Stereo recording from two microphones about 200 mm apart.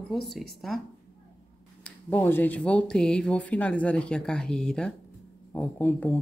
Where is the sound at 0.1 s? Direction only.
Centre (ahead or behind).